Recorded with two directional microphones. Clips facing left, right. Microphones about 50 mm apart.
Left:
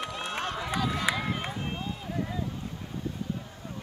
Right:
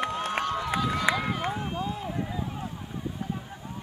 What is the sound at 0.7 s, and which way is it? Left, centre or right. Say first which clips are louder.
Run: even; right.